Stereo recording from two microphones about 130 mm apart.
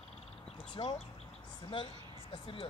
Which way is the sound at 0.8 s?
35° left (ahead or behind).